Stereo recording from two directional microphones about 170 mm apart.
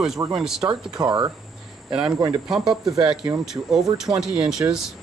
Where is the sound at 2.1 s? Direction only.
25° right (ahead or behind).